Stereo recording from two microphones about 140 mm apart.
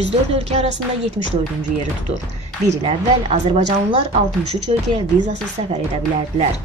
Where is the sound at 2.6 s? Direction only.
45° right (ahead or behind).